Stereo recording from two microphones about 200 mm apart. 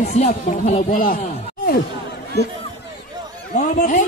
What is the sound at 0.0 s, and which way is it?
A man's voice, 35° left (ahead or behind).